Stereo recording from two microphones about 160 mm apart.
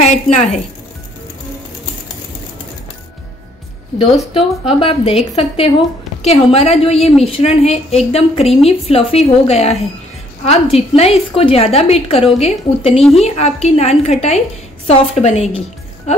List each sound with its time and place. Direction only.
0.0 s a woman's voice: 45° left (ahead or behind)
4.3 s a woman's voice: 35° left (ahead or behind)